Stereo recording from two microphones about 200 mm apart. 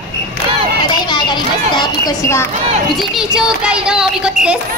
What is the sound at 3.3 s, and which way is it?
Child singing, 5° right (ahead or behind).